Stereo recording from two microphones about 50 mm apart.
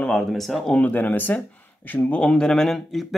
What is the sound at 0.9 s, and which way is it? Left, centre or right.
Speech, left.